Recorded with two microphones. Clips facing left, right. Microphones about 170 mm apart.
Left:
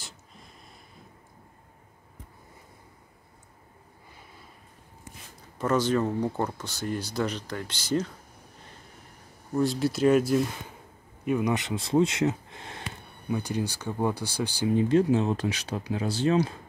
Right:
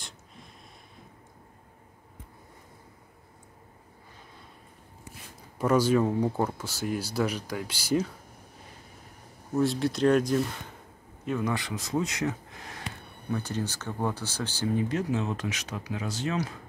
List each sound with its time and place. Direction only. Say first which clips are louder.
5.6 s speech: right 2 dB; 10° right (ahead or behind)
9.5 s speech: even; centre (ahead or behind); by 12.8 s 25° left (ahead or behind)
13.3 s speech: left 2 dB; 15° left (ahead or behind)
14.8 s speech: left 9 dB; 30° left (ahead or behind)